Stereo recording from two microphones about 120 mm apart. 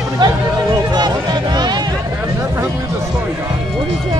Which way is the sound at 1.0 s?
35° right (ahead or behind).